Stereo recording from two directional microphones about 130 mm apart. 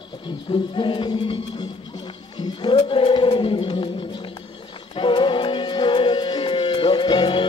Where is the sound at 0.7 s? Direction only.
40° left (ahead or behind).